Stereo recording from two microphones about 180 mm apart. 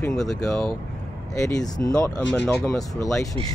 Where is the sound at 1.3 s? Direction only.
20° left (ahead or behind).